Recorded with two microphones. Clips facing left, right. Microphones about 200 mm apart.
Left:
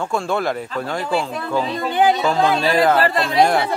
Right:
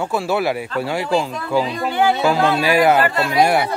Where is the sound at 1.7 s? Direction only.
20° left (ahead or behind).